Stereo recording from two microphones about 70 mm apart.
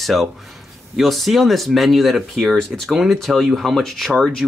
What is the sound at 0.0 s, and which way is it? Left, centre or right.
Speech, centre.